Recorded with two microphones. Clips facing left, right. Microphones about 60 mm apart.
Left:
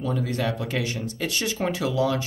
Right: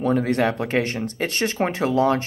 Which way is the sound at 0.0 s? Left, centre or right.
Right.